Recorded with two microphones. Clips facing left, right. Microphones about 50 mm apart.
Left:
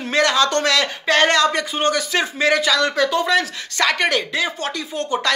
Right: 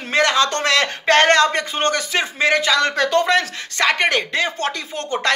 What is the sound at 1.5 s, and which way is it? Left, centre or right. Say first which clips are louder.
A man's voice: even; right.